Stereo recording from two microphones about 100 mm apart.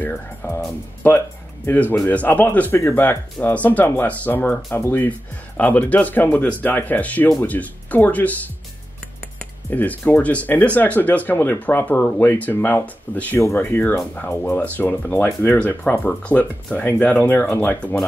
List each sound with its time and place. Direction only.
0.0 s speech: 20° left (ahead or behind)
1.7 s speech: 15° left (ahead or behind)
9.7 s speech: 20° left (ahead or behind)